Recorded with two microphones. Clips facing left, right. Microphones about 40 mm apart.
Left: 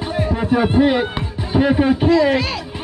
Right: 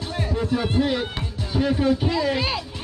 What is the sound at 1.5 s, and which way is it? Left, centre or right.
Speech, left.